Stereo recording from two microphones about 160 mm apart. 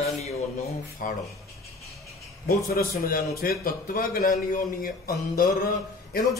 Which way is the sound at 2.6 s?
65° left (ahead or behind).